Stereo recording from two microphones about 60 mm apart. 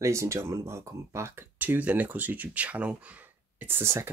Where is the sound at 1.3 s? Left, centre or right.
Right.